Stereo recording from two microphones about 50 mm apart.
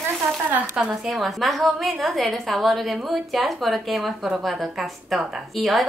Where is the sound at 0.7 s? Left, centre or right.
Centre.